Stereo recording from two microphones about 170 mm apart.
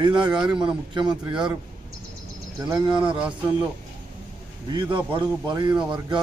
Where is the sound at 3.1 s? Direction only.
5° right (ahead or behind).